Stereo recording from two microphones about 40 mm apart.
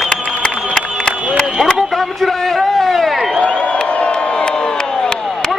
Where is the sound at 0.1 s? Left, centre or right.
Left.